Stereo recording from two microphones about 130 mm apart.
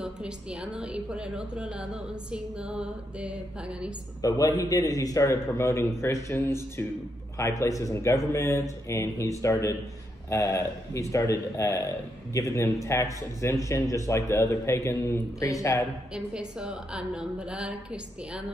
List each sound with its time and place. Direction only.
0.0 s a woman's voice: 5° right (ahead or behind)
4.2 s a man's voice: 25° left (ahead or behind)
16.1 s a woman's voice: 5° right (ahead or behind)